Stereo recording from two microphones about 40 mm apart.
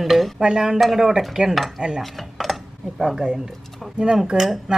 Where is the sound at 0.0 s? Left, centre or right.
Centre.